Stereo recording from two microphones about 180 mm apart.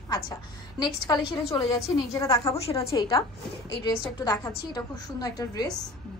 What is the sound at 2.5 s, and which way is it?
Speech, 35° left (ahead or behind).